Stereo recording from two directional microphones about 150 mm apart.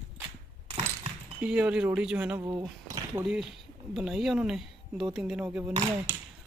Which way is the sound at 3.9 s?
5° right (ahead or behind).